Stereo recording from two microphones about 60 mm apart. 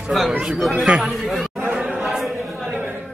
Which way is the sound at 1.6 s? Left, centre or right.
Right.